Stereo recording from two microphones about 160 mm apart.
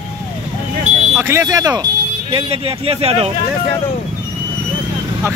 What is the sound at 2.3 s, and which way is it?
Speech, 35° right (ahead or behind).